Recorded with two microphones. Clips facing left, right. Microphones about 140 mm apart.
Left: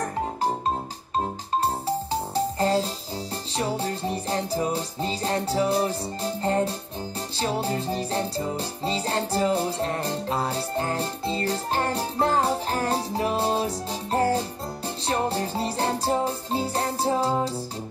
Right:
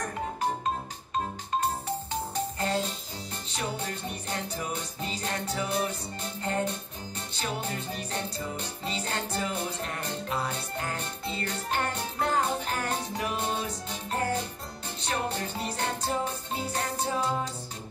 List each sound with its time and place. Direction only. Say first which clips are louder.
0.0 s music: left 4 dB; 30° left (ahead or behind)